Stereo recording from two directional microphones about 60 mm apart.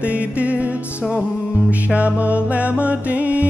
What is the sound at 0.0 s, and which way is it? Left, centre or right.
Music, right.